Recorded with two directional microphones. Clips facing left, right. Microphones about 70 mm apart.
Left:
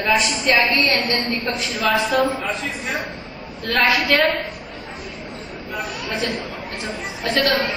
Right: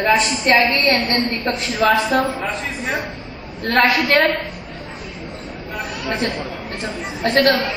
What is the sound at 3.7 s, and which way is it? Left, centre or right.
Speech, right.